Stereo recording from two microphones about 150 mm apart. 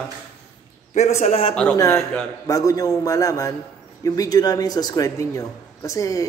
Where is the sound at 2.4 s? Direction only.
20° left (ahead or behind).